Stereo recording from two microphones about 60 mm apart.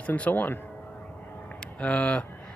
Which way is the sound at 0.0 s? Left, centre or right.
Left.